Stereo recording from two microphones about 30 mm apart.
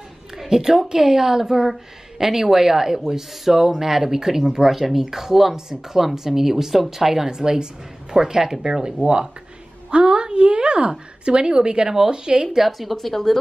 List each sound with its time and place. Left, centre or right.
0.5 s speech: right
7.2 s speech: right
9.8 s a woman's voice: right
12.6 s a woman's voice: centre
12.9 s speech: centre